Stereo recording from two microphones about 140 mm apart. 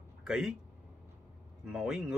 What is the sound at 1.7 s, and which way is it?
Speech, 5° right (ahead or behind).